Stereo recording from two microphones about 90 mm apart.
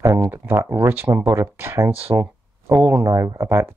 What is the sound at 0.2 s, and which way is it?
Speech, 25° right (ahead or behind).